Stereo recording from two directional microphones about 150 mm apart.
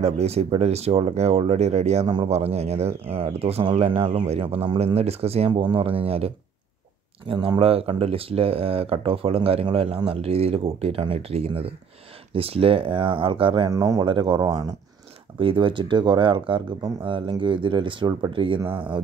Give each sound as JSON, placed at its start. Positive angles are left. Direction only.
{"t": 0.0, "sound": "speech", "side_deg": -45}
{"t": 13.7, "sound": "speech", "side_deg": -20}
{"t": 14.0, "sound": "speech", "side_deg": -35}